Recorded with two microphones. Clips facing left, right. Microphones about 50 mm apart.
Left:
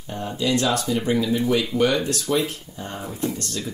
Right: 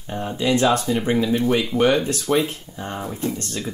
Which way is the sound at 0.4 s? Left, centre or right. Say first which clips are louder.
Right 3 dB; right.